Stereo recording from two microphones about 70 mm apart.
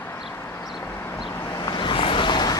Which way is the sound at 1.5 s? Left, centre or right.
Left.